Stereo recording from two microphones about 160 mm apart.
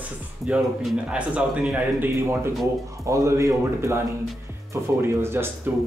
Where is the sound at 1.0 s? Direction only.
5° right (ahead or behind).